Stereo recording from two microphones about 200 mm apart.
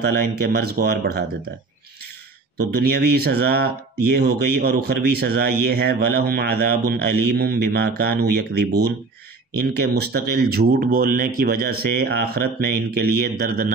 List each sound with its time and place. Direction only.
0.0 s speech: 50° right (ahead or behind)
2.5 s speech: 50° right (ahead or behind)